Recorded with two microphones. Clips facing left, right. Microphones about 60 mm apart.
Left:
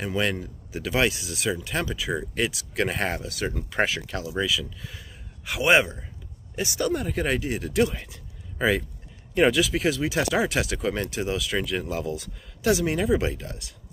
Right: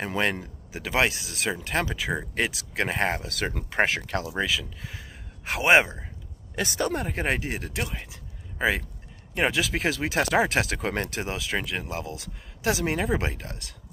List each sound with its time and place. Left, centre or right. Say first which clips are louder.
0.0 s speech: even; right
4.3 s speech: left 5 dB; right
6.5 s speech: left 1 dB; right
7.8 s speech: left 10 dB; centre
9.5 s speech: left 3 dB; right